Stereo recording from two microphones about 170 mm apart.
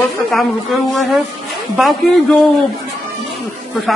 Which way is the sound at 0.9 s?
Centre (ahead or behind).